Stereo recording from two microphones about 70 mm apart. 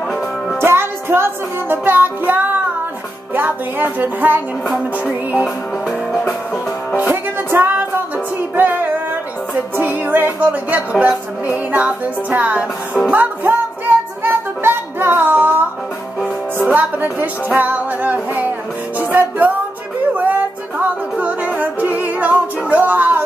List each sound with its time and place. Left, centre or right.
0.6 s music: right
3.3 s speech: right
7.0 s music: right
9.8 s speech: right
13.1 s music: right
16.6 s speech: right
18.9 s music: right